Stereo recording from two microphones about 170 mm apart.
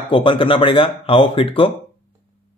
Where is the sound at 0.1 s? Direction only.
30° left (ahead or behind).